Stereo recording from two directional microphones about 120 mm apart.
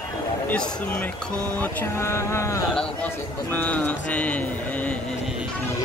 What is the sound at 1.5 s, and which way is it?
Speech, 15° left (ahead or behind).